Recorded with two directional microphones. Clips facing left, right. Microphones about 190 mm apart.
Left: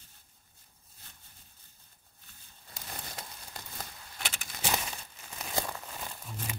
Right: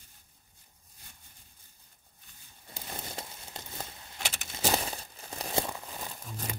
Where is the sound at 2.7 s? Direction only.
25° right (ahead or behind).